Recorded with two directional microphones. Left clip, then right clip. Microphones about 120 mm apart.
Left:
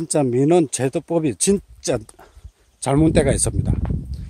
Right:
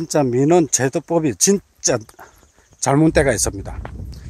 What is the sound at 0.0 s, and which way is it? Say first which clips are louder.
Speech: right 1 dB; 25° left (ahead or behind).